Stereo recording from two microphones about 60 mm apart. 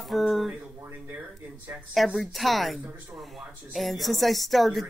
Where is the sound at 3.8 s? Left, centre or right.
Centre.